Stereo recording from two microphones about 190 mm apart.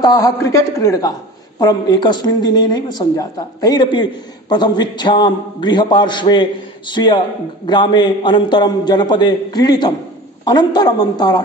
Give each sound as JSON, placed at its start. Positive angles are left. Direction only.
{"t": 0.0, "sound": "a man's voice", "side_deg": 20}